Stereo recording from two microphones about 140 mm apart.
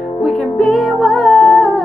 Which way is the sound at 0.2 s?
Centre (ahead or behind).